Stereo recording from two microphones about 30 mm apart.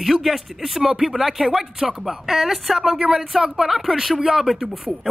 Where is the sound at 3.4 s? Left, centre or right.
Right.